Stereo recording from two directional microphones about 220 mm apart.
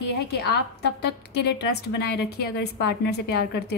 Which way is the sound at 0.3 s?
50° left (ahead or behind).